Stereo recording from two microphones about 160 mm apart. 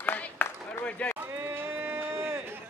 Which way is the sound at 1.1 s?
15° right (ahead or behind).